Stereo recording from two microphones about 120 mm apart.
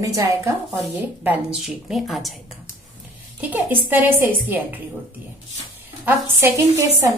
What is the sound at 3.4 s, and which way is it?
A woman's voice, 15° right (ahead or behind).